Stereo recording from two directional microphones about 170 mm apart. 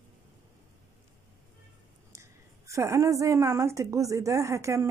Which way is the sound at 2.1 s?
15° right (ahead or behind).